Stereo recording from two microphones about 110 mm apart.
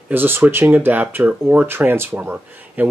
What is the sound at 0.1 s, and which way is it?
Speech, 20° right (ahead or behind).